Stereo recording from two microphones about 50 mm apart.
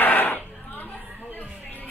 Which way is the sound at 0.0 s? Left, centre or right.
Left.